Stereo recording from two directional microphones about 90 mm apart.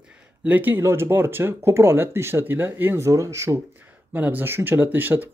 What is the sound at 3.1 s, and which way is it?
Speech, 35° right (ahead or behind).